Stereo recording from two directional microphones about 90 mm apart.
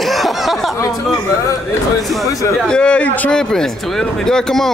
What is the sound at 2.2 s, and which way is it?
Speech, 40° left (ahead or behind).